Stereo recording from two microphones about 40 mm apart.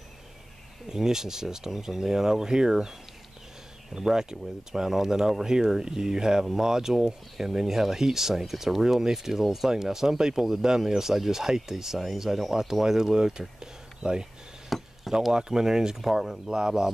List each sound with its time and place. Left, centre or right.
0.8 s speech: centre
3.9 s speech: centre
14.7 s chop: centre
15.3 s speech: centre